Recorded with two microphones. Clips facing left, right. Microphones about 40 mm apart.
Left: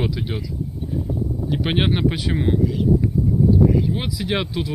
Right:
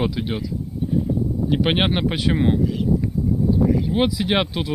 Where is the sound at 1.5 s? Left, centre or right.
Right.